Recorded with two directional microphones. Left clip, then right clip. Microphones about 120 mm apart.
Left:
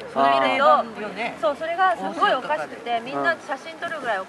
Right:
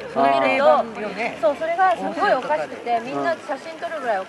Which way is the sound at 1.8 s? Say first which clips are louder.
Even; 20° left (ahead or behind).